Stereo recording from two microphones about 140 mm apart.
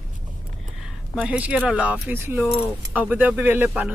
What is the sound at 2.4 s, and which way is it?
Speech, centre (ahead or behind).